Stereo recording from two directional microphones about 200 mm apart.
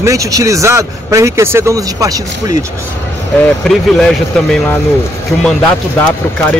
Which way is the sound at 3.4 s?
5° left (ahead or behind).